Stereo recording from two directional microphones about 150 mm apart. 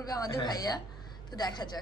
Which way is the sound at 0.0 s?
25° left (ahead or behind).